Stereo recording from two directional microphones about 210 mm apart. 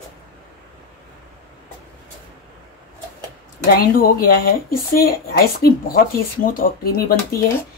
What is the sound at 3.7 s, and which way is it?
Speech, 45° left (ahead or behind).